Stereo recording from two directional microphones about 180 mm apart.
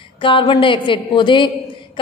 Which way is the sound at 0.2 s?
25° left (ahead or behind).